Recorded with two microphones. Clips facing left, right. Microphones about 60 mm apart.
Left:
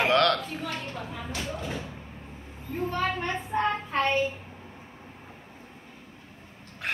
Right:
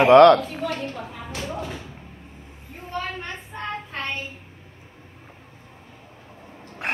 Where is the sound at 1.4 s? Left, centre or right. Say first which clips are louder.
Right 6 dB; right.